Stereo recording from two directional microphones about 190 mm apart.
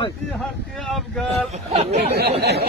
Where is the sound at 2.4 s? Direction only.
60° right (ahead or behind).